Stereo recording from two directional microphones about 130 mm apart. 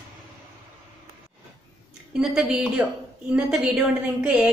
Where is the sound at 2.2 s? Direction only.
5° right (ahead or behind).